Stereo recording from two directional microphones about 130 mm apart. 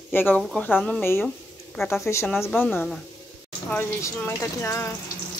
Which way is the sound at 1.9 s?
20° left (ahead or behind).